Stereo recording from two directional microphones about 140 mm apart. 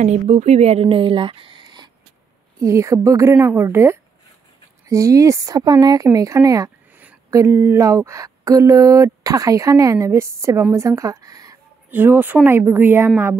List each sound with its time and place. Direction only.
0.0 s speech: 55° right (ahead or behind); by 1.9 s 35° right (ahead or behind)
2.6 s speech: 20° right (ahead or behind)
11.9 s a woman's voice: 15° right (ahead or behind)